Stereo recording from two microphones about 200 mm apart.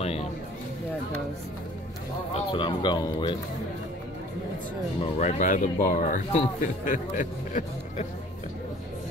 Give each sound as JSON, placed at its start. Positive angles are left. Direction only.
{"t": 0.0, "sound": "a sound", "side_deg": 30}
{"t": 2.3, "sound": "speech", "side_deg": 25}
{"t": 5.0, "sound": "speech", "side_deg": 40}